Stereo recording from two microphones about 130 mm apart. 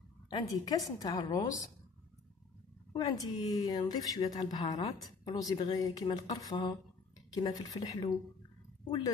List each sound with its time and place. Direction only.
0.3 s a woman's voice: 30° left (ahead or behind)
3.0 s a woman's voice: 35° left (ahead or behind)